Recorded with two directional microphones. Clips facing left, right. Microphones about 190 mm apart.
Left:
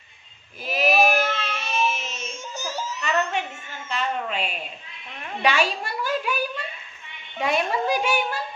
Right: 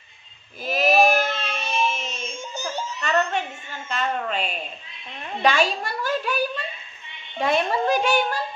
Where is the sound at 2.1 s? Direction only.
30° right (ahead or behind).